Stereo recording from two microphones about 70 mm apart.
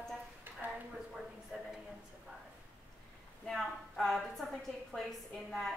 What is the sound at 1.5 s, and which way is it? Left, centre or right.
Speech, centre.